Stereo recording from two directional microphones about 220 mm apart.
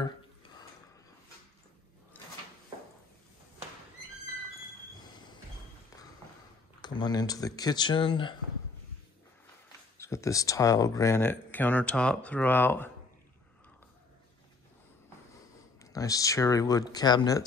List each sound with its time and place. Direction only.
6.8 s speech: 20° left (ahead or behind)
9.9 s speech: 15° left (ahead or behind)
15.8 s speech: 15° left (ahead or behind)